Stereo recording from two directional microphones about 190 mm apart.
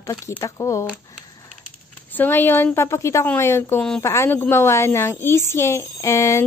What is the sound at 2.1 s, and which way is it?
A woman's voice, 10° left (ahead or behind).